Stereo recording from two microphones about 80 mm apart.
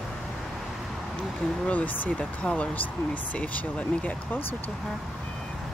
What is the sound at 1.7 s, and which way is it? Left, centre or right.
Speech, centre.